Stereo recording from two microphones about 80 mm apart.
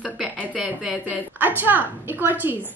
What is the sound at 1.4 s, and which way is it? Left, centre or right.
A woman's voice, right.